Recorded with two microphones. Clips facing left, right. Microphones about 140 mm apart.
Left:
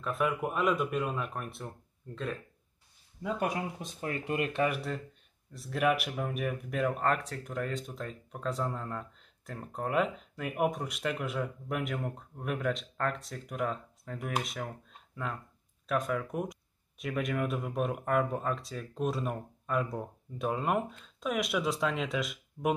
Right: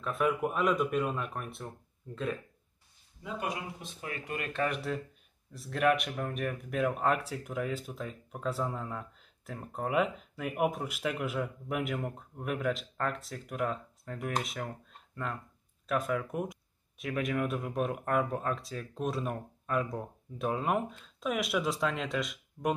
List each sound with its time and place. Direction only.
0.0 s speech: centre (ahead or behind)
4.0 s speech: 35° left (ahead or behind)
4.4 s speech: 20° left (ahead or behind)
4.6 s speech: centre (ahead or behind)